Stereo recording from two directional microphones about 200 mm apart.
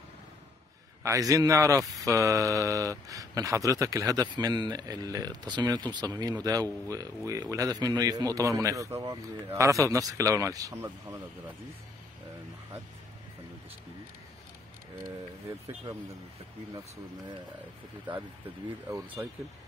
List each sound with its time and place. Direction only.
1.0 s speech: 15° right (ahead or behind)
19.2 s speech: 10° right (ahead or behind)